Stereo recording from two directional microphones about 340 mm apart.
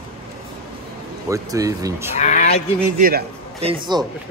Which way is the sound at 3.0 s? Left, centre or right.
Right.